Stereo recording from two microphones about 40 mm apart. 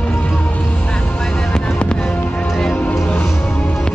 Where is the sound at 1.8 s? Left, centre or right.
Left.